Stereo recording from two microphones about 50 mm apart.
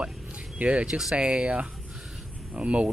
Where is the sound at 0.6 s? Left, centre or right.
Right.